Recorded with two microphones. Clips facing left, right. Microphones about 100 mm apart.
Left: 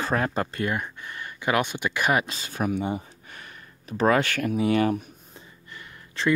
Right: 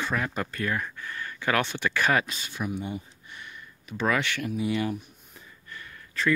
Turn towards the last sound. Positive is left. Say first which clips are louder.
# left 2 dB
turn(degrees=25)  # may be behind; listen again after turning